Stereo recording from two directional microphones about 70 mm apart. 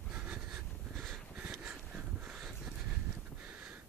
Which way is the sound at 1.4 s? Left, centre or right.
Right.